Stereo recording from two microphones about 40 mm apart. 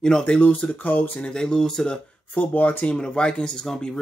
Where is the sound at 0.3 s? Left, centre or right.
Left.